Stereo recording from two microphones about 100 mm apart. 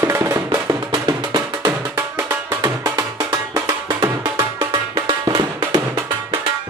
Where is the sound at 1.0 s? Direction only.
45° right (ahead or behind).